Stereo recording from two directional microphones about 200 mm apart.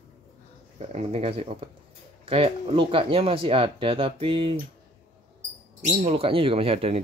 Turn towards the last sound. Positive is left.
turn(degrees=-30)  # may be behind; listen again after turning